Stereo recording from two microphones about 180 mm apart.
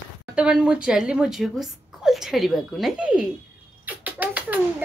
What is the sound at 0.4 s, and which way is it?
A woman's voice, 5° right (ahead or behind).